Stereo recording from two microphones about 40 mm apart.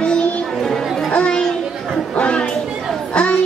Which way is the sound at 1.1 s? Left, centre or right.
Left.